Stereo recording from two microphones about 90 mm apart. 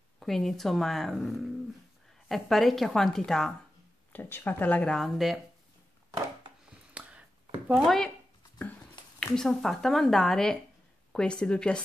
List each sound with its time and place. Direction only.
0.2 s speech: 5° left (ahead or behind)
4.1 s speech: 25° left (ahead or behind); by 5.4 s centre (ahead or behind)
6.9 s a sound: 15° right (ahead or behind)
7.8 s speech: 5° left (ahead or behind)
9.2 s speech: 5° left (ahead or behind)